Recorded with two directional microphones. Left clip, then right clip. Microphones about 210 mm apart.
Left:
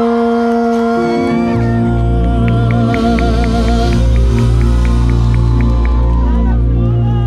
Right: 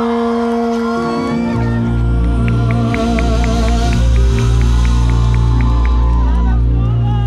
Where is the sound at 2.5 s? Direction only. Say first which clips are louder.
Left 2 dB; 45° left (ahead or behind).